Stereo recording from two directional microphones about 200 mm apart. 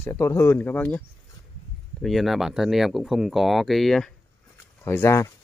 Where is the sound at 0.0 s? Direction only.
15° left (ahead or behind).